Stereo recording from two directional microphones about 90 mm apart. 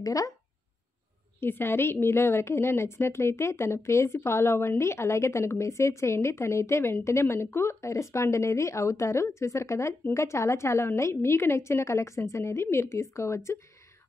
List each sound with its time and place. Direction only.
0.0 s a woman's voice: 40° left (ahead or behind)
1.4 s a woman's voice: 25° left (ahead or behind)